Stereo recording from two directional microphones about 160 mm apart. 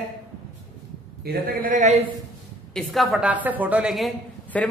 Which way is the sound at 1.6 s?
50° right (ahead or behind).